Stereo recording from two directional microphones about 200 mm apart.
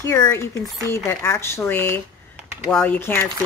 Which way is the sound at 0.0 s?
15° left (ahead or behind).